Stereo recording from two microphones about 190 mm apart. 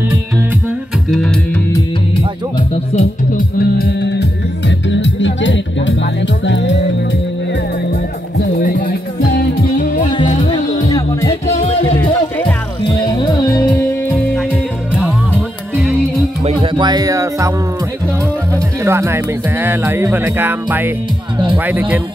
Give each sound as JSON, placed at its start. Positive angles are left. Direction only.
{"t": 1.1, "sound": "music", "side_deg": 5}
{"t": 2.7, "sound": "music", "side_deg": 35}
{"t": 3.5, "sound": "music", "side_deg": 55}
{"t": 7.9, "sound": "music", "side_deg": 55}
{"t": 10.9, "sound": "music", "side_deg": 20}
{"t": 11.6, "sound": "music", "side_deg": 30}
{"t": 12.0, "sound": "music", "side_deg": 10}
{"t": 12.8, "sound": "music", "side_deg": 20}
{"t": 15.3, "sound": "music", "side_deg": -10}
{"t": 16.4, "sound": "music", "side_deg": -25}
{"t": 18.5, "sound": "speech", "side_deg": -15}